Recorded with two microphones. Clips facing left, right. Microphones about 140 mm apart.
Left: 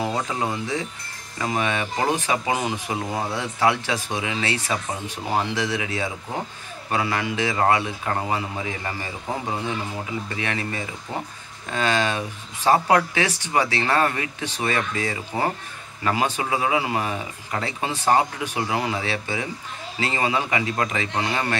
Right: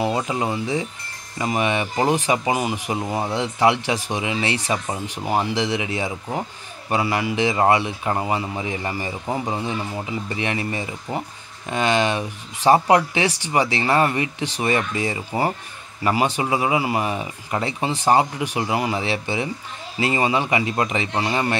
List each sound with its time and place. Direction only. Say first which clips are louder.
0.0 s speech: right 3 dB; 10° right (ahead or behind)
10.3 s speech: right 4 dB; 15° right (ahead or behind)